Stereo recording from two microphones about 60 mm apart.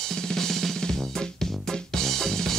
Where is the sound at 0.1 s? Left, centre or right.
Centre.